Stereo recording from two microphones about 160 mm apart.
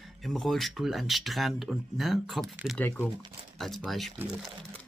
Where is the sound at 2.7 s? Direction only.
10° left (ahead or behind).